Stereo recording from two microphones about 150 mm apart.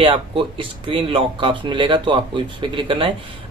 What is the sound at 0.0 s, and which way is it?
A man's voice, 35° right (ahead or behind).